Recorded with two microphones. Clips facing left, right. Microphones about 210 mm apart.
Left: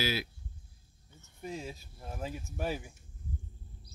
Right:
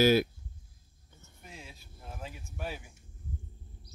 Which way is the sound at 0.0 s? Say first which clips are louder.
Right 11 dB; 50° right (ahead or behind).